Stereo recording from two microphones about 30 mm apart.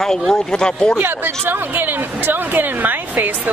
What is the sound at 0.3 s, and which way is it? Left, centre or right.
Speech, left.